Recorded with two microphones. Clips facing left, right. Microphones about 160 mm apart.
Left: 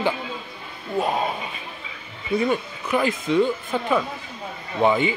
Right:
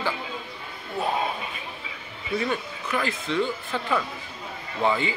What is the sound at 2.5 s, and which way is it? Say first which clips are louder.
Speech: left 5 dB; 15° left (ahead or behind).